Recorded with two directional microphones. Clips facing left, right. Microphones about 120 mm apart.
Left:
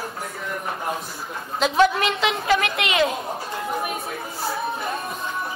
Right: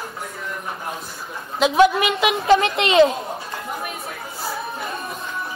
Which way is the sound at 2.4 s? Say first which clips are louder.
Right 8 dB; 25° right (ahead or behind).